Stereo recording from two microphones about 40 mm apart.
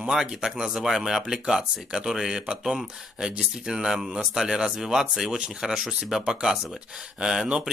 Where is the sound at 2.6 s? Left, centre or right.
Centre.